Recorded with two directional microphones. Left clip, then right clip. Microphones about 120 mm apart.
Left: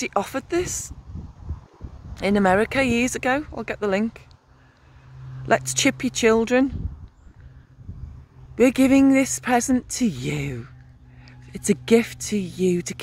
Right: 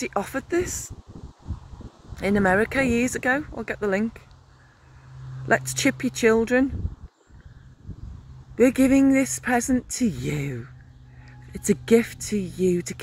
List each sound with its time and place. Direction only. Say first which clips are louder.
0.0 s speech: left 3 dB; 15° left (ahead or behind)
2.1 s speech: left 2 dB; 15° left (ahead or behind)
5.4 s speech: left 2 dB; 15° left (ahead or behind)
8.5 s speech: left 1 dB; 15° left (ahead or behind)
11.5 s speech: left 1 dB; 15° left (ahead or behind)